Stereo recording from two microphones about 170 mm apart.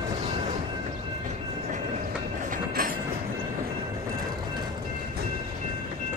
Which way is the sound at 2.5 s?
55° right (ahead or behind).